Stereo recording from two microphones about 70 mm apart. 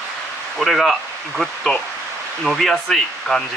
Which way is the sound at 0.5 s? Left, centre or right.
Centre.